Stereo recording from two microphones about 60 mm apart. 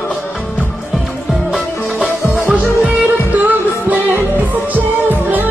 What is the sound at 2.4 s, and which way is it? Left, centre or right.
Music, right.